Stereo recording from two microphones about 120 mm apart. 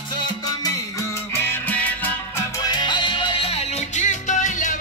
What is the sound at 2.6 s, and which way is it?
Music, 35° left (ahead or behind).